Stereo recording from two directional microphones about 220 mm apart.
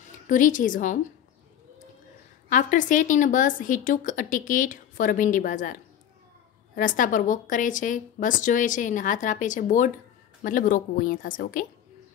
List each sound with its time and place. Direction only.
0.3 s speech: 35° left (ahead or behind)
2.5 s speech: 35° left (ahead or behind)